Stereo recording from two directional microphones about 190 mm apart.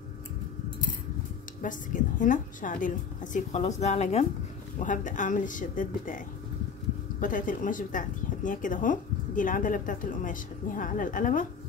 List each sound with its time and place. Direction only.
1.6 s a woman's voice: 45° left (ahead or behind)